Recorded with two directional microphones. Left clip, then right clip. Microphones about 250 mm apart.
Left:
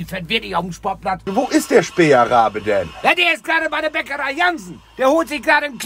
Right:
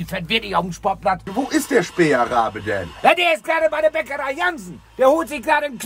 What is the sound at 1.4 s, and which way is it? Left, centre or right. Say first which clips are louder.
Speech: left 4 dB; left.